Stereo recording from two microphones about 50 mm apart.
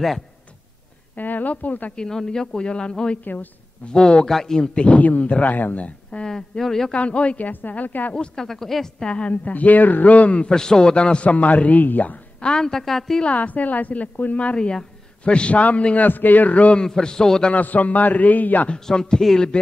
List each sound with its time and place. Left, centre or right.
1.1 s a woman's voice: left
2.0 s a man's voice: centre
4.6 s a woman's voice: left
6.2 s speech: centre
6.9 s a woman's voice: left
8.4 s a man's voice: centre
9.0 s a woman's voice: left
10.5 s a woman's voice: centre; by 12.2 s left
12.4 s a man's voice: centre
13.2 s a woman's voice: left
16.1 s a man's voice: left
16.8 s a man's voice: centre
17.5 s a man's voice: left
18.7 s a man's voice: centre